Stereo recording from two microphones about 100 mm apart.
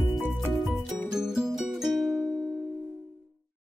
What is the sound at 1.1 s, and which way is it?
Music, 5° right (ahead or behind).